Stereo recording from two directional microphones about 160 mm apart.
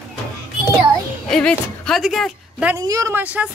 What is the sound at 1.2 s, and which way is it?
Speech, 5° left (ahead or behind).